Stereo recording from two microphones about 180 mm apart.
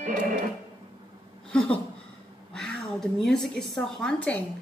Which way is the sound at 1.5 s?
5° left (ahead or behind).